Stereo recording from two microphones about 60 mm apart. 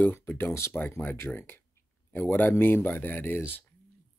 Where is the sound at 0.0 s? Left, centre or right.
Left.